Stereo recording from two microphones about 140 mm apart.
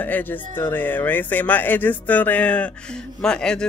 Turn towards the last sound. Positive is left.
turn(degrees=5)  # may be behind; listen again after turning